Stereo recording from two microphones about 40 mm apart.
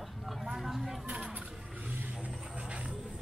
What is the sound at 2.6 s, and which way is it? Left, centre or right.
Music, right.